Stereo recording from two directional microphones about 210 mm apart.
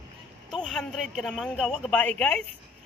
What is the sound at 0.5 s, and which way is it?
A man's voice, centre (ahead or behind).